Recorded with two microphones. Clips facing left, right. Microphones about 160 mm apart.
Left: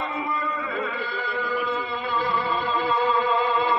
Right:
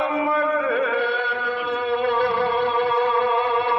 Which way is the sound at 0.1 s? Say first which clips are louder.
Right 8 dB; 90° right.